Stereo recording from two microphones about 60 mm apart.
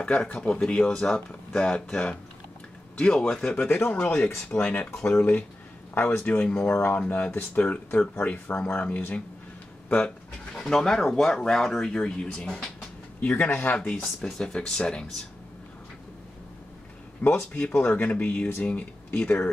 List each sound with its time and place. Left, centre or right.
0.0 s speech: left
3.6 s a man's voice: left
6.4 s speech: centre
10.5 s speech: centre
13.2 s speech: left
13.5 s a man's voice: left
14.2 s speech: centre
17.5 s speech: left